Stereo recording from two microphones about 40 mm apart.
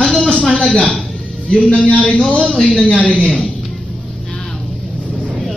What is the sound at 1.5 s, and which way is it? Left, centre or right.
Speech, left.